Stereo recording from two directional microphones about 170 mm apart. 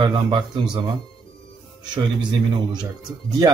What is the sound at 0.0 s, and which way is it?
Speech, 25° right (ahead or behind).